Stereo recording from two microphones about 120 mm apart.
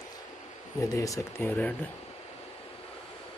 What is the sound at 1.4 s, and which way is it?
Speech, 15° left (ahead or behind).